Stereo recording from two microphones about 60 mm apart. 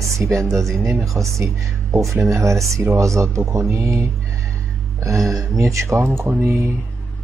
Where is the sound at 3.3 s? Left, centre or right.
Right.